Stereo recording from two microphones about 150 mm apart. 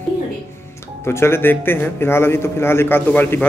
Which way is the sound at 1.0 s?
15° left (ahead or behind).